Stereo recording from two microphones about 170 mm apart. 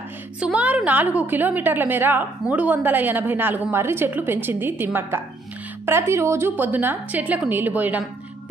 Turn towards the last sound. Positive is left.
turn(degrees=-10)  # may be behind; listen again after turning